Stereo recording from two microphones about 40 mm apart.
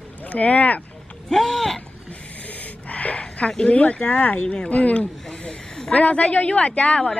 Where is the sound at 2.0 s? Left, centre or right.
Left.